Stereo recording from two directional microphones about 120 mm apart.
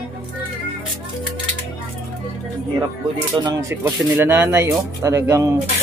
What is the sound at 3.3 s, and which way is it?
Speech, 35° right (ahead or behind).